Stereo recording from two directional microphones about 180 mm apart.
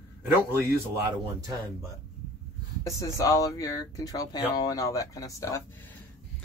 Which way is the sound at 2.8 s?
15° left (ahead or behind).